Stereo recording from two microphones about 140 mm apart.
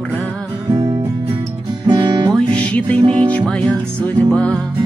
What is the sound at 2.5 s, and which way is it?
Music, 10° left (ahead or behind).